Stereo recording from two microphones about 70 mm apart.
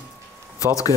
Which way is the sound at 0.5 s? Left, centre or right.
Left.